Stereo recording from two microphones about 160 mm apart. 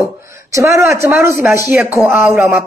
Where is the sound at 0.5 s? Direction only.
20° right (ahead or behind).